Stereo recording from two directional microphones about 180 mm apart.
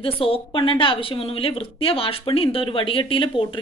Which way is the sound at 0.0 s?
30° left (ahead or behind).